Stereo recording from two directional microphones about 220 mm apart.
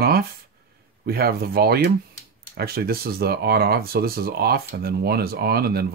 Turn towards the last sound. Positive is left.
turn(degrees=-45)  # may be behind; listen again after turning